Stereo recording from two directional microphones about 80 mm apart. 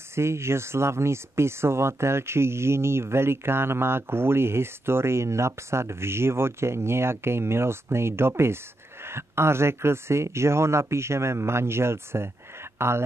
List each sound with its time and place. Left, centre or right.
0.1 s speech: right